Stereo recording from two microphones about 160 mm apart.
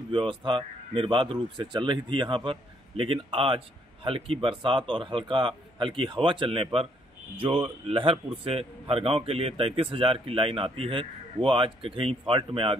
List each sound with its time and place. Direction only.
0.1 s speech: 30° right (ahead or behind)